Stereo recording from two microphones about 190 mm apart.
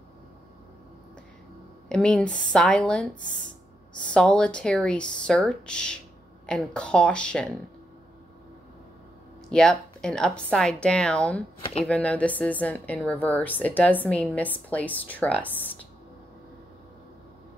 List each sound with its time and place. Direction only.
1.9 s speech: 5° left (ahead or behind)
3.2 s speech: 45° left (ahead or behind)
4.0 s speech: 5° left (ahead or behind)
9.5 s a woman's voice: 5° left (ahead or behind)